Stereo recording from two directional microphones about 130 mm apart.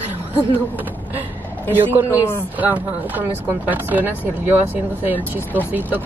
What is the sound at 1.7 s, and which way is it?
Speech, 15° right (ahead or behind).